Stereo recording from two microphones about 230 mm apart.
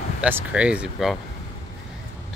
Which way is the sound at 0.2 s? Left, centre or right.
Centre.